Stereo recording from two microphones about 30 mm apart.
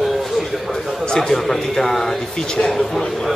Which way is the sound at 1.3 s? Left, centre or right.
Centre.